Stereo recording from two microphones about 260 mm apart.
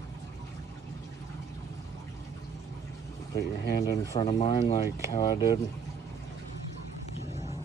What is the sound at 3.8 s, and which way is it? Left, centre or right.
Speech, centre.